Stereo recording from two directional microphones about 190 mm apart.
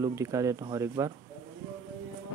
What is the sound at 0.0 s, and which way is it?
Speech, 15° right (ahead or behind).